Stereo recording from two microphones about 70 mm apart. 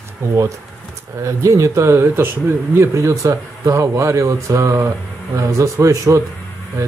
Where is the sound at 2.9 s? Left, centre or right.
Right.